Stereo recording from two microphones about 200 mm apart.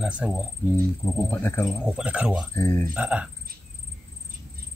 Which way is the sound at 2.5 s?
10° left (ahead or behind).